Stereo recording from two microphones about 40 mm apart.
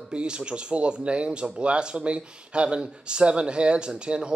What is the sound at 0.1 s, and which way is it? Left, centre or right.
Speech, right.